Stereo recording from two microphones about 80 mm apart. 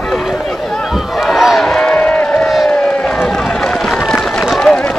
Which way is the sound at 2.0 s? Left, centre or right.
Centre.